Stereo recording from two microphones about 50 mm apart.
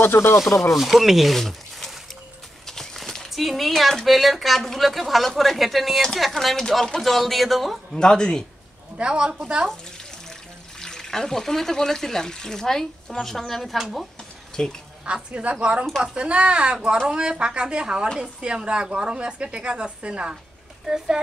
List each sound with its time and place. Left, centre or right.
0.0 s speech: left
0.4 s speech: centre
2.6 s horse: centre
3.3 s speech: centre
7.9 s speech: centre
8.9 s a woman's voice: centre
10.8 s speech: centre
13.7 s speech: centre
14.5 s speech: centre
15.1 s a woman's voice: right